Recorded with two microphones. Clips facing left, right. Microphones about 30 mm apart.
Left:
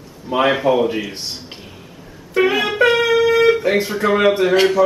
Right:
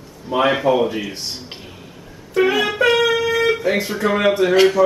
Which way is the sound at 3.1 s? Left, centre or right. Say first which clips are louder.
Left 5 dB; centre.